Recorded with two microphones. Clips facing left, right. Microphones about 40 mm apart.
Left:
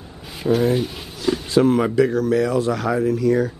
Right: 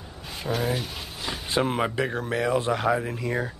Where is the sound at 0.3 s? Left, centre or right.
Centre.